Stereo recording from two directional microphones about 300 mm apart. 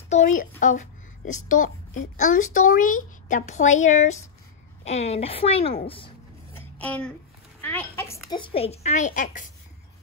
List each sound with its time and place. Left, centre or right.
0.1 s a woman's voice: left
5.9 s a sound: centre
6.8 s a child's voice: centre; by 9.5 s left